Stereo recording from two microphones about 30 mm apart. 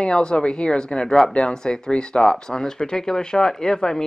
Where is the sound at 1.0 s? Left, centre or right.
Centre.